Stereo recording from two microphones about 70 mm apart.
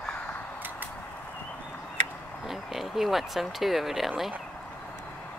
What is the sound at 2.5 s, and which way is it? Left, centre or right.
Speech, centre.